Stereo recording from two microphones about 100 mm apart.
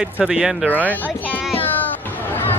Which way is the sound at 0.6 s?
15° left (ahead or behind).